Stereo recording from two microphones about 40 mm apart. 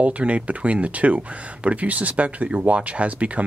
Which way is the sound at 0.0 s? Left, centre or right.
Right.